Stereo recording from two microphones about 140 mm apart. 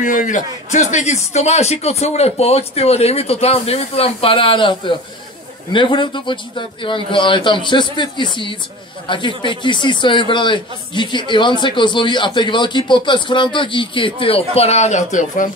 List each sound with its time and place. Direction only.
0.0 s a man's voice: 65° left (ahead or behind)